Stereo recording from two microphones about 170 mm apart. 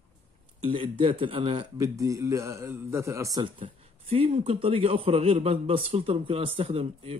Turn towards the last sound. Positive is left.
turn(degrees=-35)  # may be behind; listen again after turning